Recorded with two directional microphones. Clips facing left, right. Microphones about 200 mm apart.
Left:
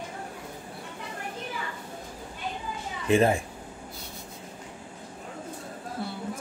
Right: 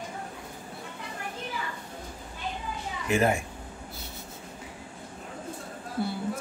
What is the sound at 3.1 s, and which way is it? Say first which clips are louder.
Speech: left 3 dB; 30° left (ahead or behind).